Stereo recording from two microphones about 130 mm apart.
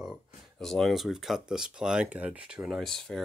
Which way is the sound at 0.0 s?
Centre (ahead or behind).